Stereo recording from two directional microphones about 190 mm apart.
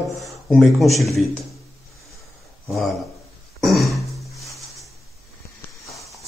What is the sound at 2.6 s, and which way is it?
Speech, centre (ahead or behind).